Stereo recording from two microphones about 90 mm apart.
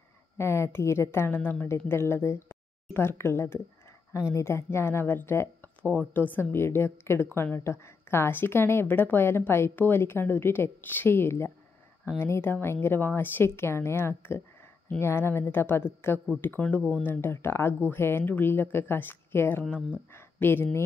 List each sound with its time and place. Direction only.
0.4 s a woman's voice: 30° left (ahead or behind)